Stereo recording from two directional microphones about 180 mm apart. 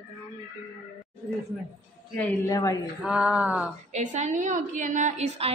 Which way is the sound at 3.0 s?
5° right (ahead or behind).